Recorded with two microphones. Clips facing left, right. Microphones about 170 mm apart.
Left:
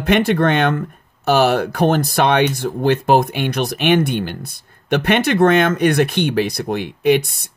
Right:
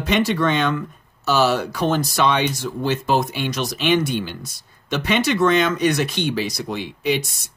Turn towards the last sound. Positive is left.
turn(degrees=55)  # may be behind; listen again after turning